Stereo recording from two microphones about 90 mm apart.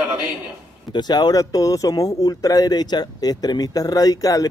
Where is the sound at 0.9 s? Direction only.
50° left (ahead or behind).